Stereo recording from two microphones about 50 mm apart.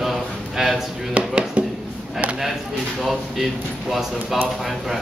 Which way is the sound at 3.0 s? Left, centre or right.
Centre.